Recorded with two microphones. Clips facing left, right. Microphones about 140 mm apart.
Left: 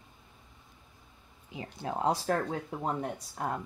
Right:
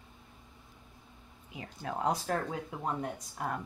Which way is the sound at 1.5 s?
30° left (ahead or behind).